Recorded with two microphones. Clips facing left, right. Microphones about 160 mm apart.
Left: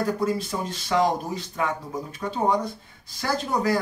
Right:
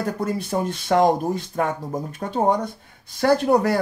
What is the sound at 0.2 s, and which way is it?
Speech, 55° right (ahead or behind).